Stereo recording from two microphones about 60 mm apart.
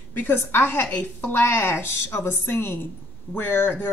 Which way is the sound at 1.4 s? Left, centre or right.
Left.